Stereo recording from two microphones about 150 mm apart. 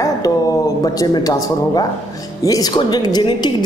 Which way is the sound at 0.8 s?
25° left (ahead or behind).